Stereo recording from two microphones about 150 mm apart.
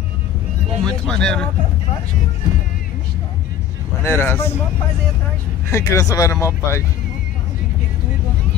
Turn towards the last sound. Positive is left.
turn(degrees=20)  # may be behind; listen again after turning